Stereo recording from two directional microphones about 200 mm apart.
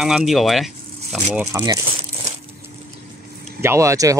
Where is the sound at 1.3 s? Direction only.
10° right (ahead or behind).